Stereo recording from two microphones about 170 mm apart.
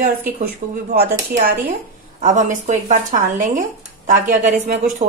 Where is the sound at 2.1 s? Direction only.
50° right (ahead or behind).